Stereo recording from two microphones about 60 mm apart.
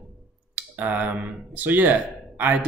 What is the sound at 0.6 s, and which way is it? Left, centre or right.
Speech, right.